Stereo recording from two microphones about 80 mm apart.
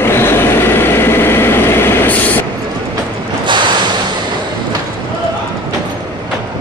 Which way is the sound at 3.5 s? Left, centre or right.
Right.